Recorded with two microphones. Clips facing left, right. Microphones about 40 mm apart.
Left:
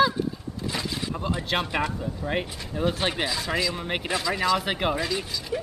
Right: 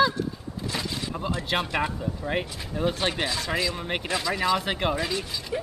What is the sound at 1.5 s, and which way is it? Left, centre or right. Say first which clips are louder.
Speech: even; centre.